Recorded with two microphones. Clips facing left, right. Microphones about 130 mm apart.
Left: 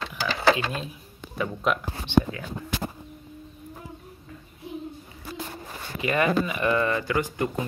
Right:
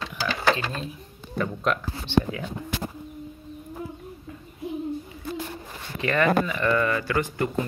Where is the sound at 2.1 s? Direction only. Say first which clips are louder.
Left 1 dB; 15° left (ahead or behind).